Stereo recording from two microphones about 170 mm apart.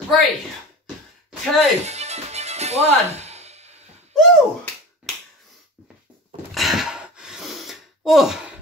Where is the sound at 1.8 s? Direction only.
40° right (ahead or behind).